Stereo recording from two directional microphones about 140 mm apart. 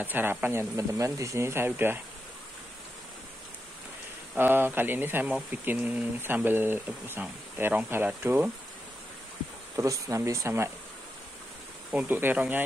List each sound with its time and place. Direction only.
0.0 s speech: 15° right (ahead or behind)
4.4 s speech: 15° right (ahead or behind)
9.8 s speech: 20° right (ahead or behind)
11.9 s speech: 10° right (ahead or behind)